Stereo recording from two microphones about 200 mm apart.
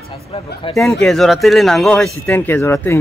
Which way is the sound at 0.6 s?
25° left (ahead or behind).